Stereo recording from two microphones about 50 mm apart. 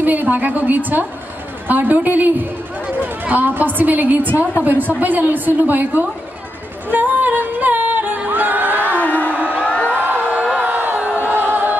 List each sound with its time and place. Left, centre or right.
0.0 s a woman's voice: right
6.9 s music: right
8.3 s crowd: right
9.1 s a sound: right
9.7 s music: left
9.9 s a sound: right
10.6 s crowd: right
11.1 s music: right